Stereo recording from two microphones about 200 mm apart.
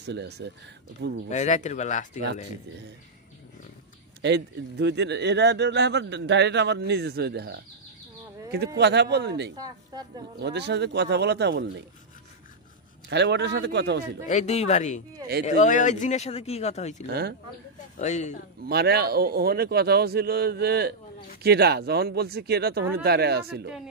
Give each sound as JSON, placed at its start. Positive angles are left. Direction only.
{"t": 0.0, "sound": "speech", "side_deg": -55}
{"t": 1.3, "sound": "speech", "side_deg": 35}
{"t": 4.2, "sound": "speech", "side_deg": -60}
{"t": 13.1, "sound": "speech", "side_deg": -60}
{"t": 14.2, "sound": "speech", "side_deg": 35}
{"t": 17.9, "sound": "speech", "side_deg": 35}
{"t": 18.7, "sound": "speech", "side_deg": -50}